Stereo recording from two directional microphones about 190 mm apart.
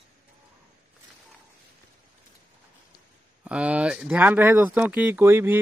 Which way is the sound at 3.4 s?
5° right (ahead or behind).